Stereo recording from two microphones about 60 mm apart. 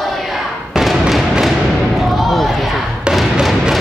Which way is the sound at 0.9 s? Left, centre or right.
Centre.